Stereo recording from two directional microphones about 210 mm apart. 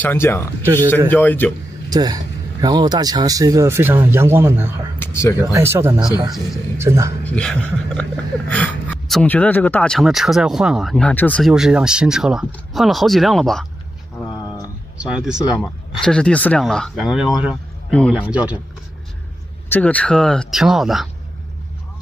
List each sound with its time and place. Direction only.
0.0 s speech: 10° left (ahead or behind)
1.9 s speech: 15° right (ahead or behind)
4.9 s a sound: 10° left (ahead or behind)
5.5 s speech: 10° right (ahead or behind)
7.2 s speech: 5° left (ahead or behind)
15.0 s speech: 5° right (ahead or behind)
19.7 s speech: 5° left (ahead or behind)